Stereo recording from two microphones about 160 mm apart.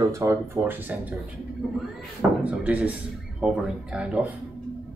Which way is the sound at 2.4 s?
10° right (ahead or behind).